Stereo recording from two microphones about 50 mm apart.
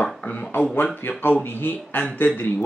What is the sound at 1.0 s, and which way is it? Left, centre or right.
Speech, left.